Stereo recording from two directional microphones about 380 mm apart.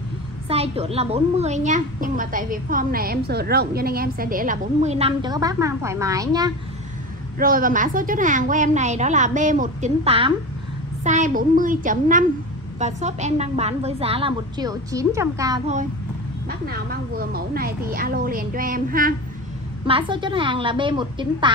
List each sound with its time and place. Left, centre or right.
0.5 s a woman's voice: centre
7.3 s a woman's voice: right
16.4 s a woman's voice: right